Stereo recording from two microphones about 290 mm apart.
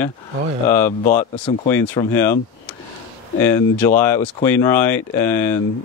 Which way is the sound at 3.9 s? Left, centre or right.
Centre.